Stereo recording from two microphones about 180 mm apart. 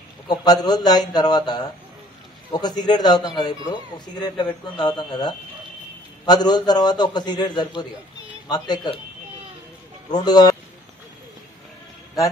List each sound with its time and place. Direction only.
0.3 s a man's voice: 20° left (ahead or behind)
10.1 s speech: 20° left (ahead or behind)